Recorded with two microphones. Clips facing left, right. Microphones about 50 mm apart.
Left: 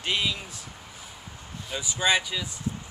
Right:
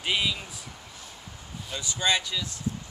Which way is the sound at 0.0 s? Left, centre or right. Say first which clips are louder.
Even; centre.